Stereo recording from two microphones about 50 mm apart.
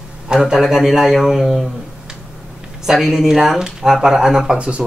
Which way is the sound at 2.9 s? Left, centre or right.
Centre.